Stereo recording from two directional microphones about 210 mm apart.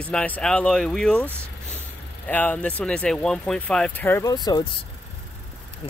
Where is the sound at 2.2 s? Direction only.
10° left (ahead or behind).